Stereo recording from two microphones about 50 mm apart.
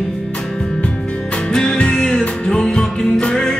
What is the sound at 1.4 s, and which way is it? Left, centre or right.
Music, centre.